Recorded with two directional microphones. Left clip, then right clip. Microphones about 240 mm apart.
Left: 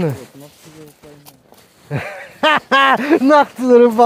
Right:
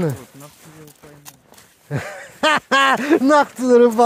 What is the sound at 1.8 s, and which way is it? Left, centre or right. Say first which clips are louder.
Speech: left 3 dB; centre.